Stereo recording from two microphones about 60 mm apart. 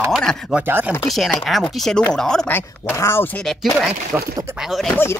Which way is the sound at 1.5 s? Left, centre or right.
Centre.